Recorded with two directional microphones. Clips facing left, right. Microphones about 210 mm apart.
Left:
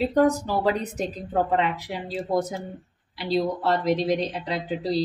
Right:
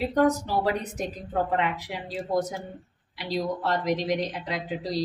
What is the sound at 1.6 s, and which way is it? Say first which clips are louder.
Speech: left 3 dB; 30° left (ahead or behind).